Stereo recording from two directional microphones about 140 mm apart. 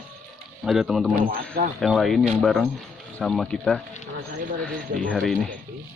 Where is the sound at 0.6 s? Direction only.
Centre (ahead or behind).